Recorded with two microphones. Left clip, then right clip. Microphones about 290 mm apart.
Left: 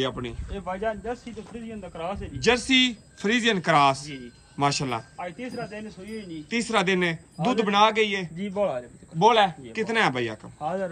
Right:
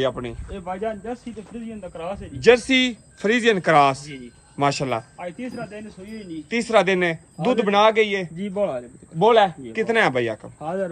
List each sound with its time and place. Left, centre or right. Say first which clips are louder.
0.0 s a man's voice: right 5 dB; centre
0.5 s speech: right 1 dB; left
2.4 s a man's voice: right 5 dB; centre
5.1 s speech: right 2 dB; left
6.5 s a man's voice: right 6 dB; centre
8.4 s speech: even; left
9.2 s a man's voice: right 3 dB; centre
10.6 s speech: right 1 dB; left